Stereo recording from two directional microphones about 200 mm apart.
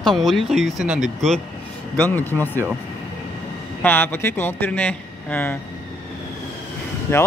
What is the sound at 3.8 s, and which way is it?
Speech, 10° left (ahead or behind).